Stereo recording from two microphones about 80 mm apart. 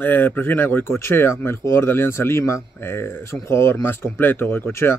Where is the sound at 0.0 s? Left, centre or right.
Left.